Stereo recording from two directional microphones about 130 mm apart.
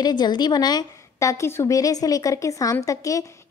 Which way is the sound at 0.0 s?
35° left (ahead or behind).